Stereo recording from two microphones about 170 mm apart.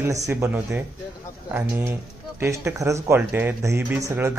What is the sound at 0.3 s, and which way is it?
Speech, 15° right (ahead or behind).